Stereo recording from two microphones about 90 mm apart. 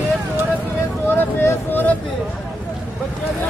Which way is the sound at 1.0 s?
25° left (ahead or behind).